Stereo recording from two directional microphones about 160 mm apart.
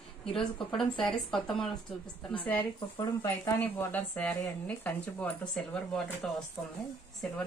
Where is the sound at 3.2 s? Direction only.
15° left (ahead or behind).